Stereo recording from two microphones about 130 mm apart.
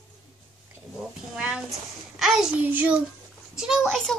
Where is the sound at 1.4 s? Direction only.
5° right (ahead or behind).